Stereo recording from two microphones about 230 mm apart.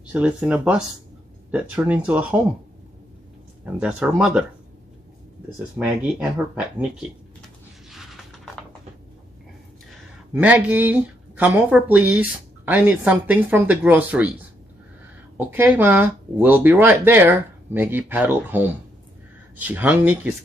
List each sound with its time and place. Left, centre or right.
0.0 s speech: centre
3.8 s speech: centre
5.8 s speech: centre
10.3 s speech: centre